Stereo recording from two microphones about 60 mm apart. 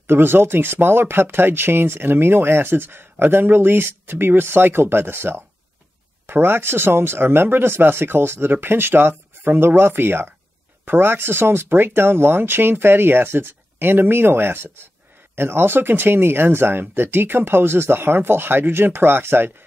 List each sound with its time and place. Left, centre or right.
0.0 s speech: right